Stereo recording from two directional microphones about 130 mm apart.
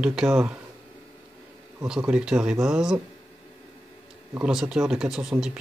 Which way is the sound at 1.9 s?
10° right (ahead or behind).